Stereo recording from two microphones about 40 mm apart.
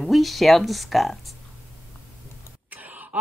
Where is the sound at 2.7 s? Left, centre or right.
Right.